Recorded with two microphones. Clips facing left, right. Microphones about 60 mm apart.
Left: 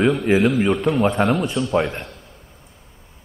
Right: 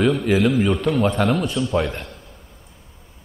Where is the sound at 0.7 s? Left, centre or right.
Centre.